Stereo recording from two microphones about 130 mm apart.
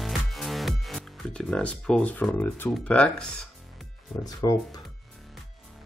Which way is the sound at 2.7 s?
5° left (ahead or behind).